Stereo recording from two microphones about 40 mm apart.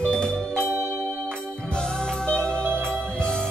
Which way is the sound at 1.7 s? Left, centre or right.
Centre.